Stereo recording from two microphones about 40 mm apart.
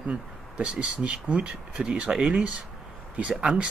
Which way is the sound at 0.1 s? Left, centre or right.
Right.